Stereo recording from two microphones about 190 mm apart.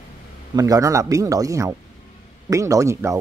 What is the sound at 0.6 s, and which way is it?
Speech, 20° right (ahead or behind).